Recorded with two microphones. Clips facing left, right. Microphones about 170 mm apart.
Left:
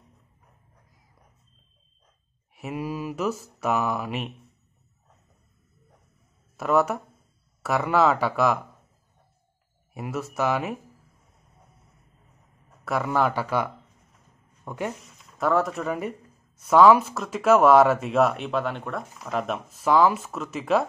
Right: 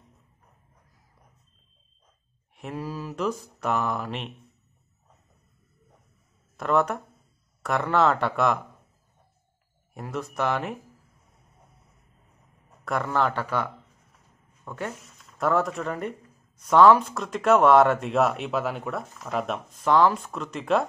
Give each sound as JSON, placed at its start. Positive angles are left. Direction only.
{"t": 2.5, "sound": "mantra", "side_deg": 10}
{"t": 3.6, "sound": "speech", "side_deg": 5}
{"t": 6.5, "sound": "speech", "side_deg": 5}
{"t": 9.9, "sound": "speech", "side_deg": 5}
{"t": 12.8, "sound": "mantra", "side_deg": 5}
{"t": 14.6, "sound": "speech", "side_deg": 15}
{"t": 15.3, "sound": "speech", "side_deg": 0}